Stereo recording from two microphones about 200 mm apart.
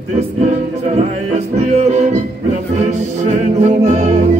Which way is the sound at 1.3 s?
35° right (ahead or behind).